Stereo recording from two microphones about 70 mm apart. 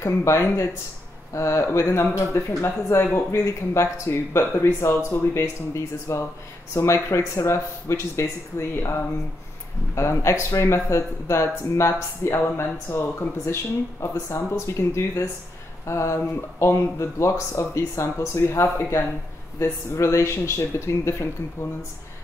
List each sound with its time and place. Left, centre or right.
0.0 s speech: left
9.9 s speech: left